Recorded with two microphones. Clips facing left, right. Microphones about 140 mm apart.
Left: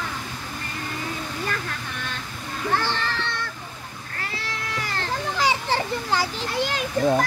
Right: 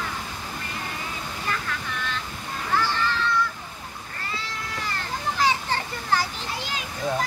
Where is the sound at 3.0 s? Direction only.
70° left (ahead or behind).